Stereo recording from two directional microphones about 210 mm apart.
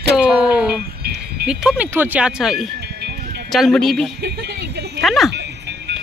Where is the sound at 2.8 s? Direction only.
50° right (ahead or behind).